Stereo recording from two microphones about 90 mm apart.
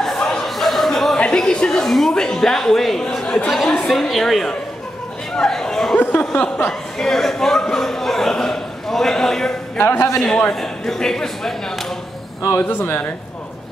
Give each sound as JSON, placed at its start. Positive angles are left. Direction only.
{"t": 0.0, "sound": "a sound", "side_deg": 5}
{"t": 3.5, "sound": "a man's voice", "side_deg": 5}
{"t": 5.9, "sound": "speech", "side_deg": 20}
{"t": 7.0, "sound": "a sound", "side_deg": 5}
{"t": 9.8, "sound": "speech", "side_deg": 25}
{"t": 10.2, "sound": "a man's voice", "side_deg": 5}
{"t": 12.6, "sound": "speech", "side_deg": 25}